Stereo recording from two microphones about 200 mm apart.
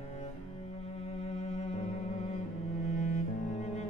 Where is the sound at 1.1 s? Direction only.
35° left (ahead or behind).